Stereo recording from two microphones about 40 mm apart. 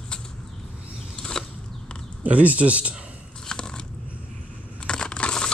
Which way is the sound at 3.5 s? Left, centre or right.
Centre.